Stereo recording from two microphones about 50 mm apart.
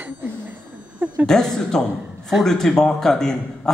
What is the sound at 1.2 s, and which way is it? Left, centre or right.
A woman's voice, centre.